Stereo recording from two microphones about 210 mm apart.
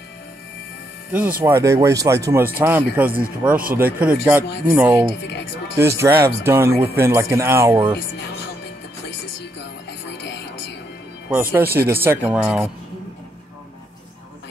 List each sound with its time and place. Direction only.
1.4 s speech: 15° right (ahead or behind)
9.4 s music: 55° left (ahead or behind)
11.2 s speech: 10° right (ahead or behind)